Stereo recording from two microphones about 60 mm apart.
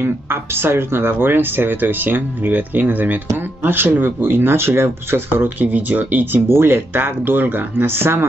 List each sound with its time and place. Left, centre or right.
0.0 s speech: right
5.4 s speech: right
6.5 s speech: right